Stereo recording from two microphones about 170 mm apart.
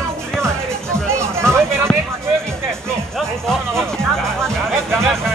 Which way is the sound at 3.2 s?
Centre (ahead or behind).